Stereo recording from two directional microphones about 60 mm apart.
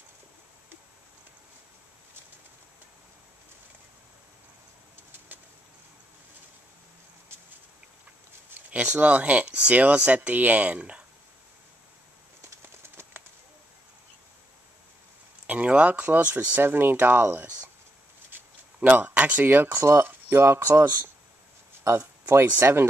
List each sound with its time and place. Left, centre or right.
8.5 s speech: right
12.4 s a sound: right
15.4 s speech: right
18.8 s speech: right
19.8 s speech: right
20.1 s a sound: right
22.2 s speech: right